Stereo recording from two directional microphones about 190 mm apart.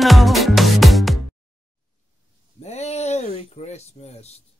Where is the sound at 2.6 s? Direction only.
35° left (ahead or behind).